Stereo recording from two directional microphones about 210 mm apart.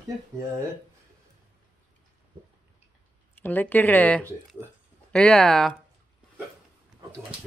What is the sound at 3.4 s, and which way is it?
Speech, 10° left (ahead or behind).